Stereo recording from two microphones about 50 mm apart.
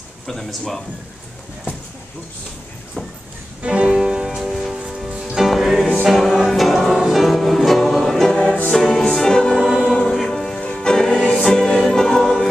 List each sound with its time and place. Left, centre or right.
0.3 s speech: centre
3.6 s music: right
4.5 s music: centre